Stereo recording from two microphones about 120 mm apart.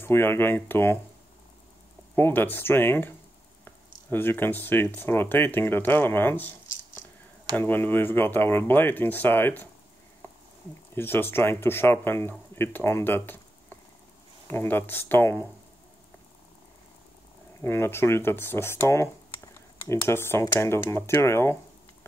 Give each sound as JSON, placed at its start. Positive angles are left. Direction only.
{"t": 0.0, "sound": "speech", "side_deg": 20}
{"t": 2.1, "sound": "speech", "side_deg": 20}
{"t": 7.5, "sound": "speech", "side_deg": 15}
{"t": 11.0, "sound": "speech", "side_deg": 20}
{"t": 17.6, "sound": "speech", "side_deg": 20}